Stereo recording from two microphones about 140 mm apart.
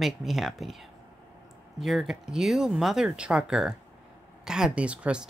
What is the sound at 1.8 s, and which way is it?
Speech, centre (ahead or behind).